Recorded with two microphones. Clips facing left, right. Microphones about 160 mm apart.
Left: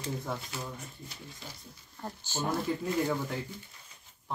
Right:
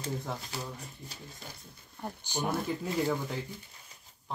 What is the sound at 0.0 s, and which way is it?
Speech, 35° right (ahead or behind).